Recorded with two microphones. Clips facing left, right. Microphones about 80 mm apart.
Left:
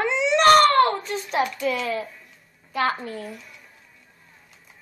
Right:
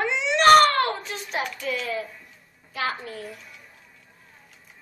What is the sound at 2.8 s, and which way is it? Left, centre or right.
Speech, left.